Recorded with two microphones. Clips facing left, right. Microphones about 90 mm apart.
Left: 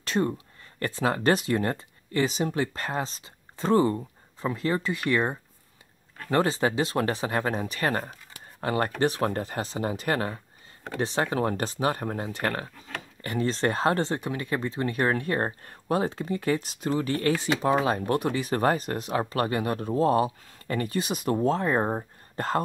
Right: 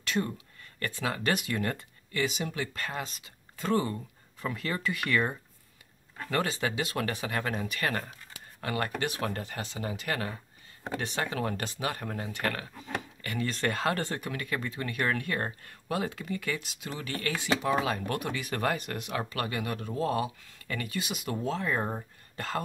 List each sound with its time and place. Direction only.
0.0 s speech: 35° left (ahead or behind)